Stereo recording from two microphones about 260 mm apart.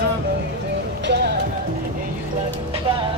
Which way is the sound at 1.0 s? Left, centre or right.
Right.